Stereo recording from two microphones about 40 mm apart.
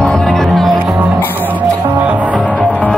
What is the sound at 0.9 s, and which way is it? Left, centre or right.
Music, right.